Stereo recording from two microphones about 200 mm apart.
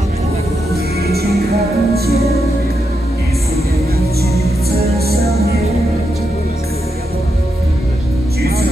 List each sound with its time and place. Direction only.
1.0 s music: 50° right (ahead or behind)
2.1 s music: 30° left (ahead or behind)
8.4 s music: 50° right (ahead or behind)